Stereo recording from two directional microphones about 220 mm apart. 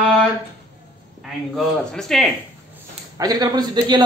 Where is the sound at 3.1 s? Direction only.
15° right (ahead or behind).